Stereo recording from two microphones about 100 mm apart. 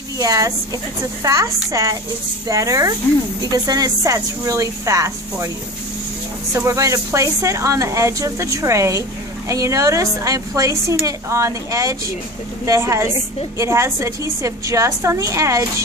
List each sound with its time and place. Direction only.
0.2 s speech: 35° right (ahead or behind)
6.5 s a woman's voice: 30° right (ahead or behind)